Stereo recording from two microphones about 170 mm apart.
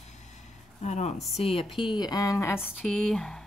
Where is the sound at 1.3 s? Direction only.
35° left (ahead or behind); by 2.6 s 15° left (ahead or behind).